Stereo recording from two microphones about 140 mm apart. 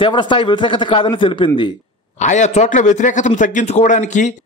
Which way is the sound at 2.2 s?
60° left (ahead or behind).